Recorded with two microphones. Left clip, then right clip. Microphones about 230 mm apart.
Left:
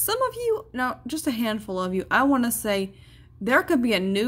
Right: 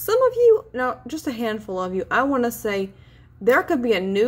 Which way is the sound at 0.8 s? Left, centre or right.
Left.